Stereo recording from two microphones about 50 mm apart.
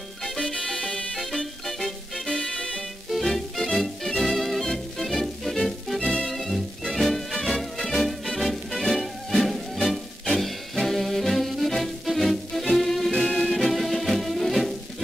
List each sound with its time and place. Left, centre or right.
0.2 s music: centre
3.1 s music: centre
5.9 s music: centre
6.2 s music: centre